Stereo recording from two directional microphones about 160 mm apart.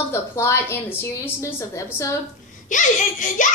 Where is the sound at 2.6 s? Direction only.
55° left (ahead or behind).